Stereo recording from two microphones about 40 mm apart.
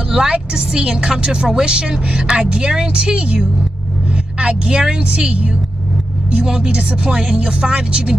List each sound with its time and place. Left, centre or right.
0.1 s a woman's voice: centre